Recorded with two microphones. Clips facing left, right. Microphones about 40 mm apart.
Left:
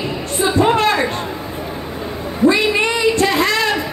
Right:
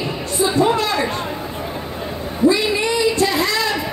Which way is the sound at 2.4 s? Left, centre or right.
Left.